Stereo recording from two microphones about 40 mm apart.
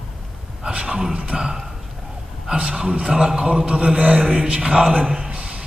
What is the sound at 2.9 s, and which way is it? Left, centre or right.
A man's voice, right.